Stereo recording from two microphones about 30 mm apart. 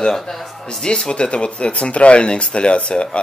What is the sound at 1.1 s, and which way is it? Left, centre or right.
Speech, left.